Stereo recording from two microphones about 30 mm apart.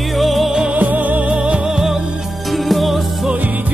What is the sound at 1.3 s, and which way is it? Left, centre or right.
Music, right.